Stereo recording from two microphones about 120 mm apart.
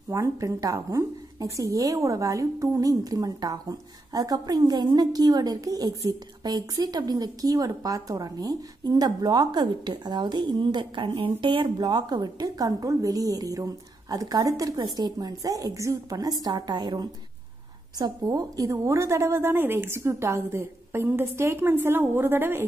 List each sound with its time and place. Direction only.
0.1 s a woman's voice: 25° right (ahead or behind)